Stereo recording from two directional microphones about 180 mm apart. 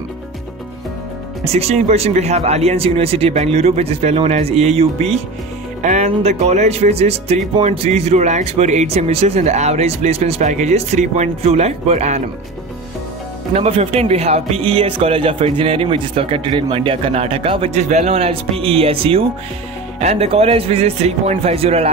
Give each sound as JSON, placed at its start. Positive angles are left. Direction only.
{"t": 1.4, "sound": "speech", "side_deg": -35}
{"t": 13.5, "sound": "speech", "side_deg": -35}